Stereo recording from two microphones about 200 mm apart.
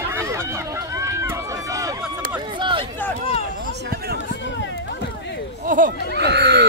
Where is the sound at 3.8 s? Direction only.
50° right (ahead or behind).